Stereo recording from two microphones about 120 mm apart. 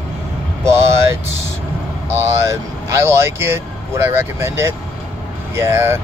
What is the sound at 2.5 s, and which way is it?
Speech, 25° right (ahead or behind).